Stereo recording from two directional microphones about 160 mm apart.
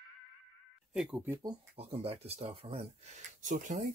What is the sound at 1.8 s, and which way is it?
Speech, 40° right (ahead or behind).